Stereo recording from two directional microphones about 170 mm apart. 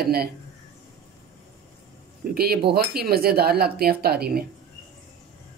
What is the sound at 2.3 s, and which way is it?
Speech, 65° right (ahead or behind).